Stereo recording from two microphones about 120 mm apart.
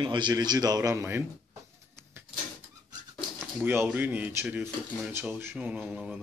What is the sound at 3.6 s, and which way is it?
Speech, 20° right (ahead or behind).